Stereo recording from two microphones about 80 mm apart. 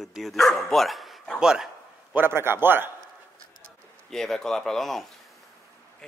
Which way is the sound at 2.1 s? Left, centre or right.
Right.